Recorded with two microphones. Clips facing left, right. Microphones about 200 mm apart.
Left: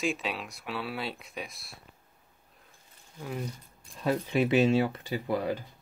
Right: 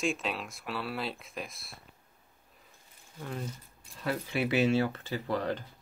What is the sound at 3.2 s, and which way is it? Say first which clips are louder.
Speech: left 2 dB; 5° left (ahead or behind).